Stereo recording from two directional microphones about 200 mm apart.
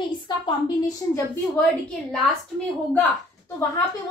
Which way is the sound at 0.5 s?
20° left (ahead or behind).